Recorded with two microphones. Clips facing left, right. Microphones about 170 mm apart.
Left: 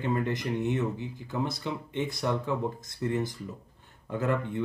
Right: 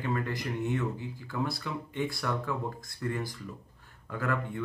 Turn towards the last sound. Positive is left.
turn(degrees=20)  # may be behind; listen again after turning